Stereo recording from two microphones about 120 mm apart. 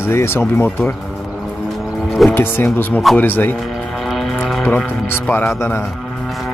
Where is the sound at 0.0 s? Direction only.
20° left (ahead or behind).